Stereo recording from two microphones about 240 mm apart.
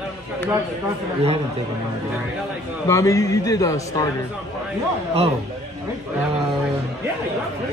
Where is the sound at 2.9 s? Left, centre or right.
Centre.